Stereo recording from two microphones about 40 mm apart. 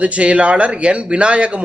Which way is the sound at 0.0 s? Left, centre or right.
Right.